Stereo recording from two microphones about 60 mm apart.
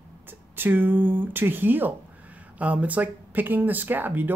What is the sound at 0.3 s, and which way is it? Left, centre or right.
Speech, right.